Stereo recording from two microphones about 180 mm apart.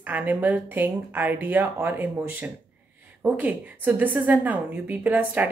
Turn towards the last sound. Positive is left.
turn(degrees=-10)  # may be behind; listen again after turning